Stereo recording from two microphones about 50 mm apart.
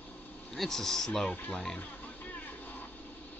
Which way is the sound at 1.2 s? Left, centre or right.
Left.